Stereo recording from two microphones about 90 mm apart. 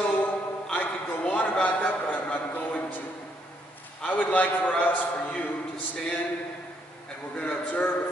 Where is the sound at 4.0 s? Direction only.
15° left (ahead or behind).